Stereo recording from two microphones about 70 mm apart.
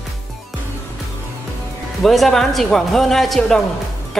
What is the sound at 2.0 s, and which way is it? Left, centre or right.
Speech, centre.